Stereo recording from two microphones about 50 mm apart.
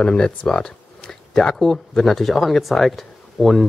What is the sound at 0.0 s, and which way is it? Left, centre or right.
Speech, centre.